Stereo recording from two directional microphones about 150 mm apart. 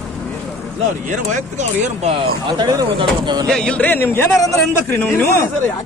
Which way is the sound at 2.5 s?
30° right (ahead or behind).